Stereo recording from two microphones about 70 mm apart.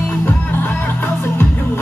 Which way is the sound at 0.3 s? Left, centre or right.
Left.